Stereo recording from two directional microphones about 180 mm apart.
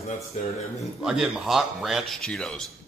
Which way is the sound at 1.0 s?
5° right (ahead or behind).